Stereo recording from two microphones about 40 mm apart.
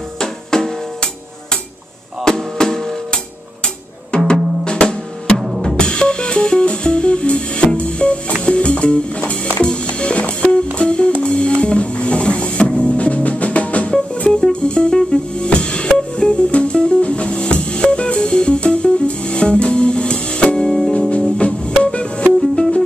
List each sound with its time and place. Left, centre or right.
0.2 s music: centre
4.3 s drum: left
5.8 s music: left
14.3 s music: left
21.2 s music: left